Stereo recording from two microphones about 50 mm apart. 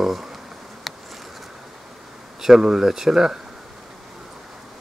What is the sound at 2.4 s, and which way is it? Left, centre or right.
Speech, centre.